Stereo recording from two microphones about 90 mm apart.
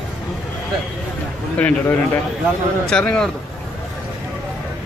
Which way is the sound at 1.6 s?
20° left (ahead or behind).